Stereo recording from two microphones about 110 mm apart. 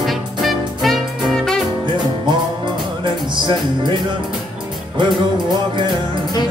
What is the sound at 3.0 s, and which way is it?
Music, 45° right (ahead or behind).